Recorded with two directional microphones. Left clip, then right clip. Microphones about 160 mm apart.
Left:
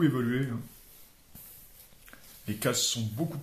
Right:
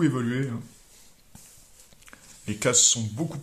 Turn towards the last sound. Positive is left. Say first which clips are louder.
# right 5 dB
turn(degrees=-40)  # may be behind; listen again after turning